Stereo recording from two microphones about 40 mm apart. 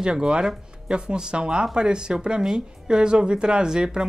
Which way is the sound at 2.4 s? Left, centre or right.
Centre.